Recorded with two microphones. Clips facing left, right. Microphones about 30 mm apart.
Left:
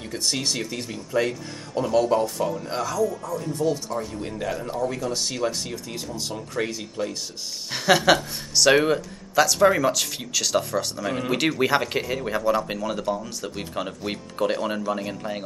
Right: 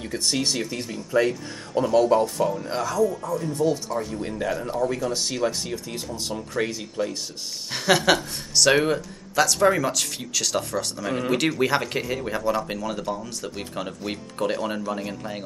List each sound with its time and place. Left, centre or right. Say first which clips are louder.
0.0 s speech: right 1 dB; centre
3.3 s speech: right 1 dB; centre